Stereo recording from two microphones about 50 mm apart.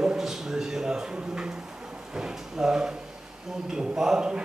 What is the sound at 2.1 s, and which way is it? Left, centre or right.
A man's voice, centre.